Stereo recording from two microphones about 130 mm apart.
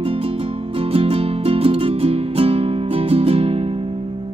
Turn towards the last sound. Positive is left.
turn(degrees=-50)  # may be behind; listen again after turning